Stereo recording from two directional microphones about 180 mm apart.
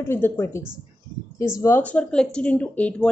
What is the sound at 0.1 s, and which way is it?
A woman's voice, 15° left (ahead or behind).